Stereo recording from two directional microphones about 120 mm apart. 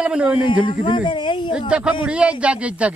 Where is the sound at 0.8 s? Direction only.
45° left (ahead or behind).